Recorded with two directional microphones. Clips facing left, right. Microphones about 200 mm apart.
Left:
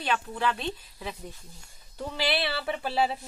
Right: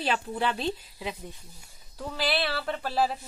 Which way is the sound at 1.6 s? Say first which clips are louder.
Left 3 dB; 5° right (ahead or behind).